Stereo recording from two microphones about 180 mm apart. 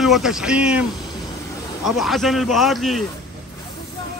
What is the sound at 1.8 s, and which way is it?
A man's voice, centre (ahead or behind).